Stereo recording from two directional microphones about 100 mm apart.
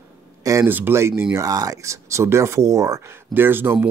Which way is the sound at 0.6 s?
20° right (ahead or behind).